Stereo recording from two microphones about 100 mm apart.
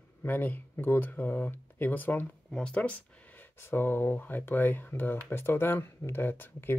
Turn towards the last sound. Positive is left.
turn(degrees=20)  # may be behind; listen again after turning